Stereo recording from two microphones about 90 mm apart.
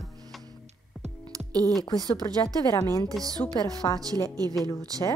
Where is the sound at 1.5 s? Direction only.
45° right (ahead or behind).